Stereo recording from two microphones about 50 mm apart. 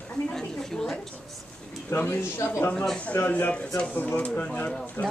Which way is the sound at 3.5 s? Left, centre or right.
Centre.